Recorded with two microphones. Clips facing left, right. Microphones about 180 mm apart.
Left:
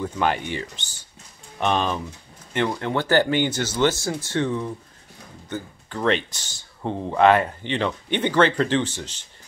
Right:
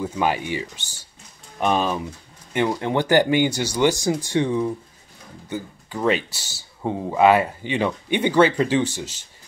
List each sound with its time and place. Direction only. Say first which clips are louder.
0.0 s speech: right 1 dB; 10° right (ahead or behind)